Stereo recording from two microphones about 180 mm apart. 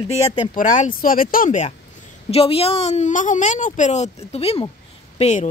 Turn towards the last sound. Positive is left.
turn(degrees=40)  # may be behind; listen again after turning